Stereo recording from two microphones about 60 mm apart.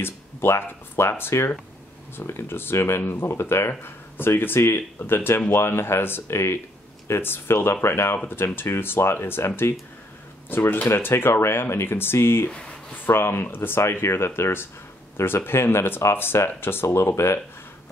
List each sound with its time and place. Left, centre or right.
0.0 s speech: left
10.5 s speech: left
12.4 s speech: centre
12.9 s speech: left